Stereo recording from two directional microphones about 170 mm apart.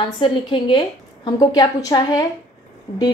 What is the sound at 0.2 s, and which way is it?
Speech, 30° left (ahead or behind).